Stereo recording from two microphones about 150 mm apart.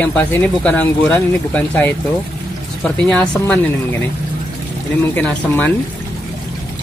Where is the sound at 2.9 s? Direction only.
5° left (ahead or behind).